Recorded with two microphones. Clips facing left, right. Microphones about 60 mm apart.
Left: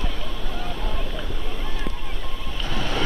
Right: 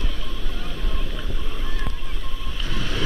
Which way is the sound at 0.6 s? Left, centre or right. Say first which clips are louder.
Left 3 dB; left.